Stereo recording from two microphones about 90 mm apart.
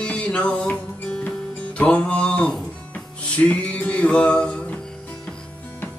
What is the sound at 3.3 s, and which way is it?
Music, 15° left (ahead or behind).